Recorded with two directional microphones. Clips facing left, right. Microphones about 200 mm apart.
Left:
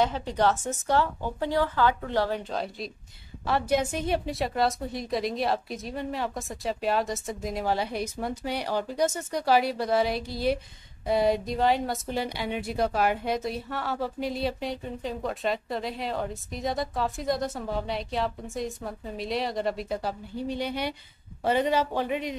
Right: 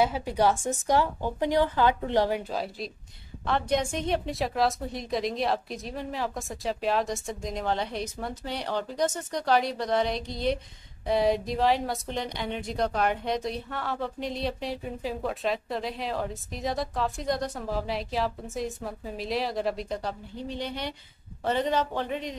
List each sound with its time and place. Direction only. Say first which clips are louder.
0.0 s a woman's voice: right 1 dB; 10° right (ahead or behind)
2.5 s a woman's voice: even; 5° right (ahead or behind)